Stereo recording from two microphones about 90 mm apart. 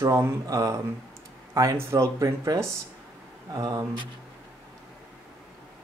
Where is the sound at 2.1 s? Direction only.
40° right (ahead or behind).